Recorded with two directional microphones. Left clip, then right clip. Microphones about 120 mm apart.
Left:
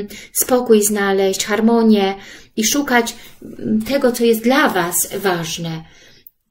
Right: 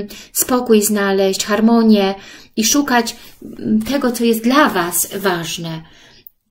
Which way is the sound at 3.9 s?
45° right (ahead or behind).